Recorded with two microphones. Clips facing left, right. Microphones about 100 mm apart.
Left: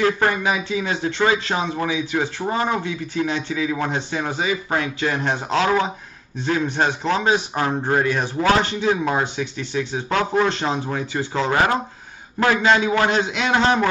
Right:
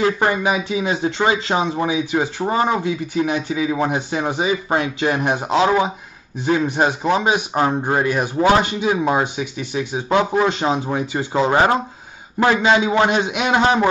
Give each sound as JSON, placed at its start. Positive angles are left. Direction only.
{"t": 0.0, "sound": "a man's voice", "side_deg": -20}